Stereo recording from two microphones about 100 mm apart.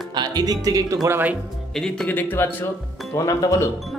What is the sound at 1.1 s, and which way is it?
Speech, 15° right (ahead or behind).